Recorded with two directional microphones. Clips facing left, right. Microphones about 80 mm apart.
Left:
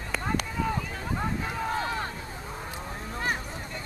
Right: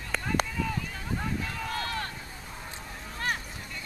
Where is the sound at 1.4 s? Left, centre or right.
Centre.